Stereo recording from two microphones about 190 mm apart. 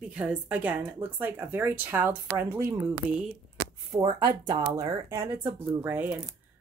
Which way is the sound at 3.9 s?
20° right (ahead or behind).